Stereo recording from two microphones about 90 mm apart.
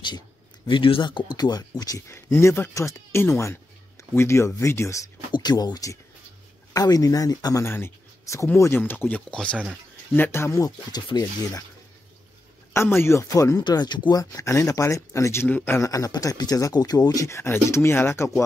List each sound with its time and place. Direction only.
0.7 s speech: 75° left (ahead or behind)
1.3 s speech: 50° left (ahead or behind)
2.0 s speech: 30° left (ahead or behind)
5.3 s speech: 50° left (ahead or behind)
7.6 s speech: 25° left (ahead or behind); by 9.6 s 10° left (ahead or behind)
10.1 s speech: 25° left (ahead or behind)
12.7 s speech: 25° left (ahead or behind)
13.7 s speech: 55° left (ahead or behind)
14.3 s speech: 35° left (ahead or behind)
15.9 s speech: 40° left (ahead or behind)